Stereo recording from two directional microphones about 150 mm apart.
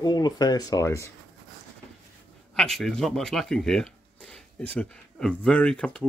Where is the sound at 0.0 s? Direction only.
25° left (ahead or behind).